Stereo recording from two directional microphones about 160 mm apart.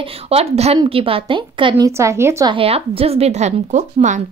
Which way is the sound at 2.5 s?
35° right (ahead or behind).